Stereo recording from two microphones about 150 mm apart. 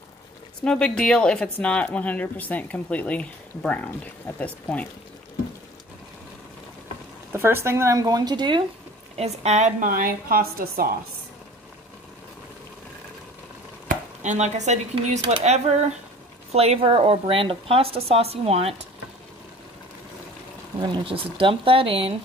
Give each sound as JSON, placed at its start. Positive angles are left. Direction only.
{"t": 0.6, "sound": "speech", "side_deg": 5}
{"t": 7.3, "sound": "speech", "side_deg": -15}
{"t": 9.1, "sound": "a woman's voice", "side_deg": -45}
{"t": 13.8, "sound": "chopping", "side_deg": -55}
{"t": 15.4, "sound": "speech", "side_deg": -50}
{"t": 20.8, "sound": "speech", "side_deg": -35}